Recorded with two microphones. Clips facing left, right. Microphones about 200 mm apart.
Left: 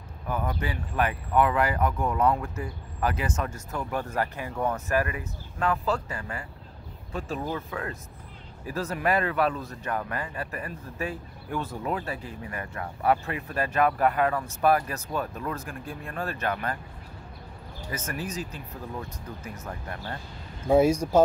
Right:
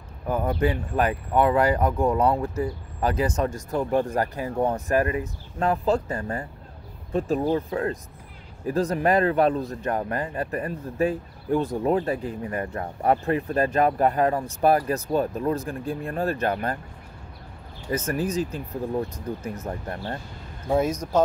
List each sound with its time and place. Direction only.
0.3 s speech: 40° right (ahead or behind)
17.9 s speech: 35° right (ahead or behind)
20.6 s speech: 10° left (ahead or behind)